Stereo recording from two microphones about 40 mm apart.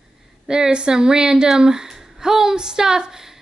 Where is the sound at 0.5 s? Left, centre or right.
Right.